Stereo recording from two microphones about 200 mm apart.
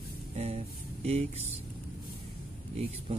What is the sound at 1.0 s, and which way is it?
Mantra, 30° right (ahead or behind).